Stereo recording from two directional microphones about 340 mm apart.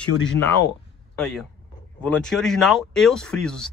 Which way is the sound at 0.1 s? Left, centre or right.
Left.